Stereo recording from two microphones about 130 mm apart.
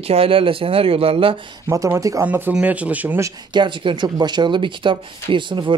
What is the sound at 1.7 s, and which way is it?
Speech, 25° right (ahead or behind).